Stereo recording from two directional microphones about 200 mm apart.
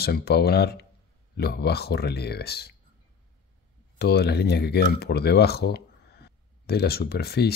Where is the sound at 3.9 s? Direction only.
55° left (ahead or behind).